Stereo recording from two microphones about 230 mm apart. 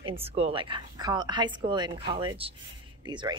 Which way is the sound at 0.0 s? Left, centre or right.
Right.